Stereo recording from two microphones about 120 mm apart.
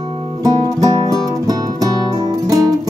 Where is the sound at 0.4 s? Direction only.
35° right (ahead or behind).